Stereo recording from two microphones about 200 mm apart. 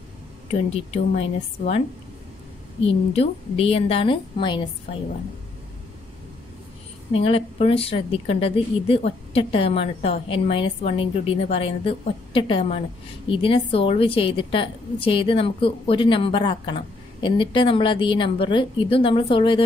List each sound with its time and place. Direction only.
0.5 s speech: 30° left (ahead or behind)
2.8 s speech: 30° left (ahead or behind)
7.1 s speech: 30° left (ahead or behind)